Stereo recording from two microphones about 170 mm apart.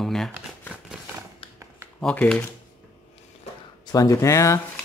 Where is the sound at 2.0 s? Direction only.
10° left (ahead or behind).